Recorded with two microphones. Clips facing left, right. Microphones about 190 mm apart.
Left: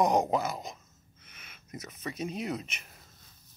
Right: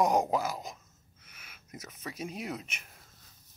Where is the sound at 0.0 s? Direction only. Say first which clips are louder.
Left 1 dB; 5° right (ahead or behind).